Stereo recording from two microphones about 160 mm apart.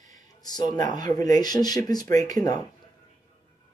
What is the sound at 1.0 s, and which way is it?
Speech, 25° left (ahead or behind).